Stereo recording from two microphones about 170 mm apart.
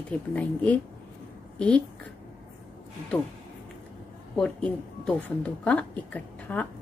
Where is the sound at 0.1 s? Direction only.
10° left (ahead or behind).